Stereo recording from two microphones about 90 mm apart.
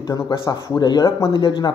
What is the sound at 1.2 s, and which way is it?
Speech, 65° left (ahead or behind).